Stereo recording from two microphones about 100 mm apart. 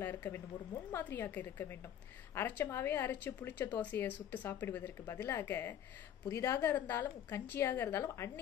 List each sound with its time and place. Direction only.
0.0 s speech: 20° left (ahead or behind)